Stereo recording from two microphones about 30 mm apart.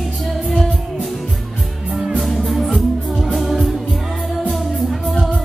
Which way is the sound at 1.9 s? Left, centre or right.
Centre.